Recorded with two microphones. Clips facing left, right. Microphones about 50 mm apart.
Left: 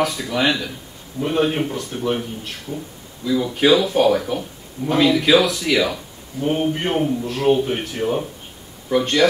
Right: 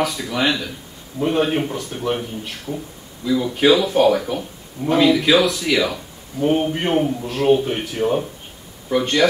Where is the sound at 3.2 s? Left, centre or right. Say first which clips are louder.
Right 1 dB; centre.